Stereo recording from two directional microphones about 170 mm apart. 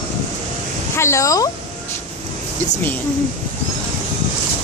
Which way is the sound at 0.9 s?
15° left (ahead or behind).